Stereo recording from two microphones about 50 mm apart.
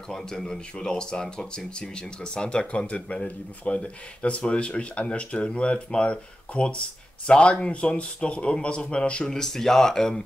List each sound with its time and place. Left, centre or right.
0.1 s speech: centre
9.3 s speech: centre